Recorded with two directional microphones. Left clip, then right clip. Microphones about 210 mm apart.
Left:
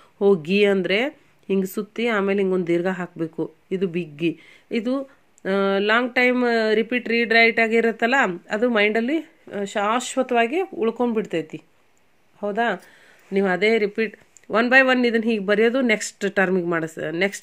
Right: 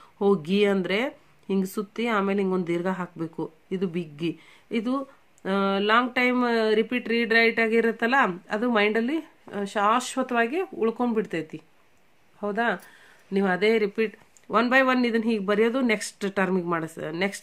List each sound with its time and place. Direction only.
0.2 s speech: 5° left (ahead or behind)